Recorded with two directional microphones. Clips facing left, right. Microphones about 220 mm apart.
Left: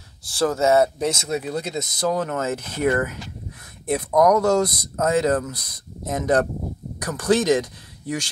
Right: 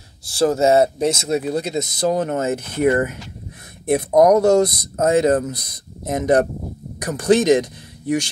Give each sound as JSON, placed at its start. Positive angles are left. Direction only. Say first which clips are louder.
{"t": 0.4, "sound": "speech", "louder": "right 3 dB", "side_deg": -25}